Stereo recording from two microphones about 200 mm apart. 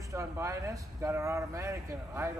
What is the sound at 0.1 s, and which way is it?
Speech, 15° right (ahead or behind).